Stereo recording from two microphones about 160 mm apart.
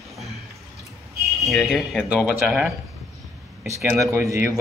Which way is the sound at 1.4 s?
Centre (ahead or behind).